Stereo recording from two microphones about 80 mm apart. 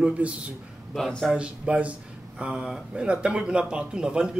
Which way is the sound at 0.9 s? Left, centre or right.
Centre.